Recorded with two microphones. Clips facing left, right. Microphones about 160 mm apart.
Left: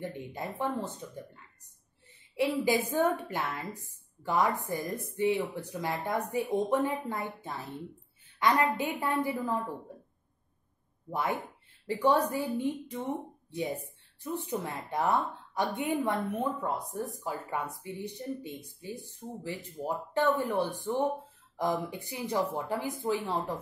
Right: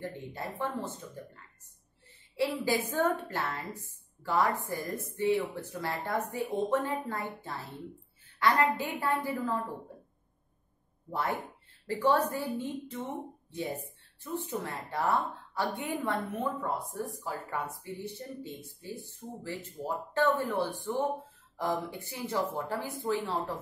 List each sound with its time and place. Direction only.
0.0 s speech: 15° left (ahead or behind)
2.3 s a woman's voice: 15° left (ahead or behind)
11.1 s speech: 15° left (ahead or behind)
14.2 s a woman's voice: 15° left (ahead or behind)